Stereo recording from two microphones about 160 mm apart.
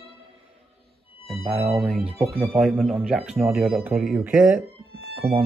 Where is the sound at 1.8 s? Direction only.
5° right (ahead or behind).